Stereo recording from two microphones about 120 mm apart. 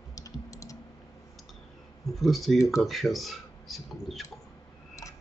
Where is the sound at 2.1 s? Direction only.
Centre (ahead or behind).